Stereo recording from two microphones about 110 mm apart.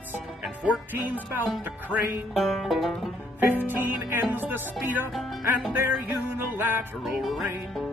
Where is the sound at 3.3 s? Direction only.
20° right (ahead or behind).